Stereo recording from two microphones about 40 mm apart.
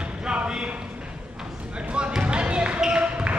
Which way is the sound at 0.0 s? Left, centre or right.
Right.